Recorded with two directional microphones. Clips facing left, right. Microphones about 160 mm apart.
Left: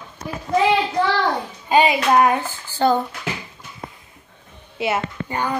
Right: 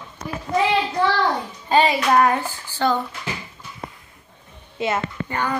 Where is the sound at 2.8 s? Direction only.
35° left (ahead or behind).